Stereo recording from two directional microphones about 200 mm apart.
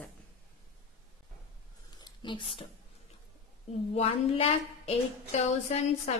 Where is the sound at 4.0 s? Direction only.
30° left (ahead or behind).